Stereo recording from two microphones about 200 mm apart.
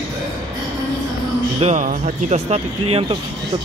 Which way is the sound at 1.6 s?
35° right (ahead or behind).